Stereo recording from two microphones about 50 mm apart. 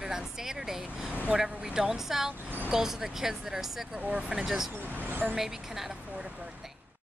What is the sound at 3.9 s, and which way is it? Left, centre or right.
Speech, right.